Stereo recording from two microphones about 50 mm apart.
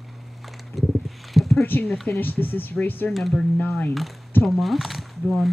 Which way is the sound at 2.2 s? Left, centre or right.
Left.